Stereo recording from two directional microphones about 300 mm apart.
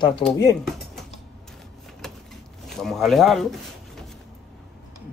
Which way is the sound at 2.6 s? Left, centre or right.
Centre.